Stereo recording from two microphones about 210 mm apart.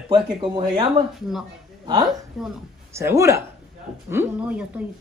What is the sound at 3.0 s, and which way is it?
Speech, 15° right (ahead or behind).